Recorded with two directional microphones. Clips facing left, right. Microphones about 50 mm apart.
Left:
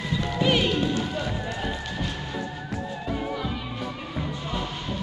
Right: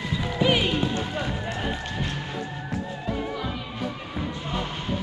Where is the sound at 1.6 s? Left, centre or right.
Centre.